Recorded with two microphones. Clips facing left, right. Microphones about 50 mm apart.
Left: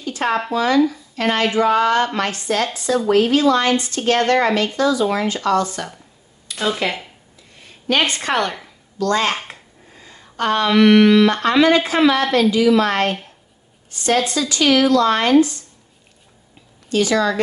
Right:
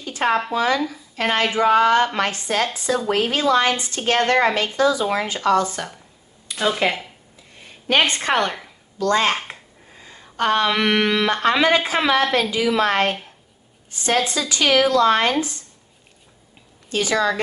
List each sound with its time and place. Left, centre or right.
0.0 s a woman's voice: centre
4.7 s a woman's voice: right
6.5 s speech: centre
8.1 s a woman's voice: right
9.5 s a sound: centre
11.4 s a woman's voice: centre
16.9 s a woman's voice: right